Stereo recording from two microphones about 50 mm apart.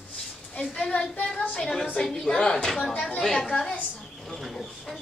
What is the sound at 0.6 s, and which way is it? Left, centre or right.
A child's voice, centre.